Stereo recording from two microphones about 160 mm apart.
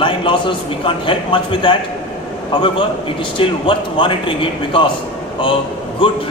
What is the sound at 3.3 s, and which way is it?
A man's voice, 35° left (ahead or behind).